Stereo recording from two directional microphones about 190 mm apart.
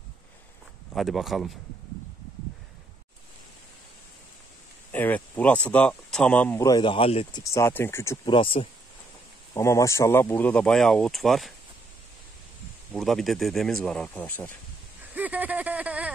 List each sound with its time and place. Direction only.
0.9 s speech: centre (ahead or behind)
4.9 s speech: 10° left (ahead or behind); by 7.4 s 30° left (ahead or behind)
7.4 s speech: 15° left (ahead or behind)
8.4 s speech: 30° left (ahead or behind)
9.5 s speech: 15° left (ahead or behind); by 11.5 s centre (ahead or behind)
12.9 s speech: centre (ahead or behind)
15.1 s speech: 10° right (ahead or behind)